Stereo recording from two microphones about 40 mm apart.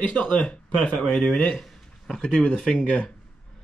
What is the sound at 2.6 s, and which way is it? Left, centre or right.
Speech, left.